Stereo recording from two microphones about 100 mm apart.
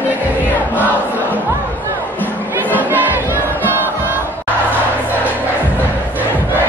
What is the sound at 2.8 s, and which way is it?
Music, 20° right (ahead or behind).